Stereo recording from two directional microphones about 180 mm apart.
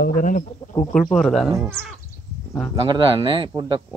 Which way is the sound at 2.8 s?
30° right (ahead or behind).